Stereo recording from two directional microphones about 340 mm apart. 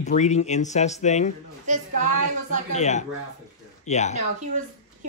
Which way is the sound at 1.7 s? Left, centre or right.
Right.